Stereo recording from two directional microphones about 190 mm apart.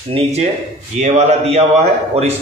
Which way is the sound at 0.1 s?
35° right (ahead or behind).